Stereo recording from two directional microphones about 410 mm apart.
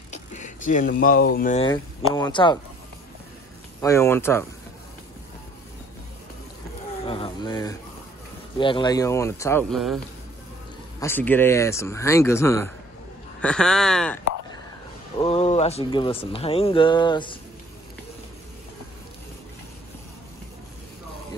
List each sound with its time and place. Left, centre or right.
0.1 s speech: centre
3.8 s speech: centre
7.1 s a sound: centre
8.5 s speech: centre
11.0 s speech: centre
15.2 s speech: centre